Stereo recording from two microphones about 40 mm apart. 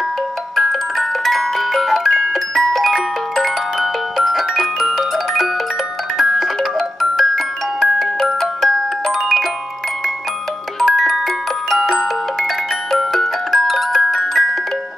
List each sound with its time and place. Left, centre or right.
0.6 s music: centre
3.7 s glockenspiel: centre
9.1 s music: centre
10.8 s music: centre